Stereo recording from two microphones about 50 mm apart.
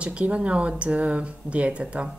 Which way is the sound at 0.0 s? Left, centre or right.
Right.